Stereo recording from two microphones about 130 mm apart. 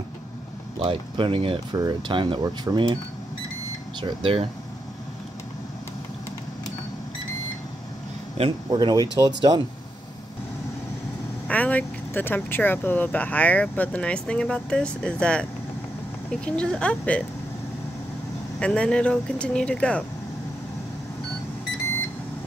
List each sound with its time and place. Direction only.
0.8 s speech: 40° right (ahead or behind)
4.0 s speech: 45° right (ahead or behind)
8.6 s speech: 30° right (ahead or behind)
11.4 s speech: 10° left (ahead or behind)
18.6 s speech: 10° left (ahead or behind)